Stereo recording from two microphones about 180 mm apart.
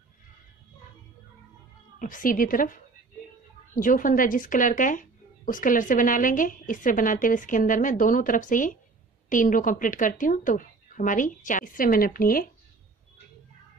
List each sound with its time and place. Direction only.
2.0 s a woman's voice: 50° left (ahead or behind)